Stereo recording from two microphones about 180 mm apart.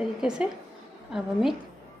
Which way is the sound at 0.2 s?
5° right (ahead or behind).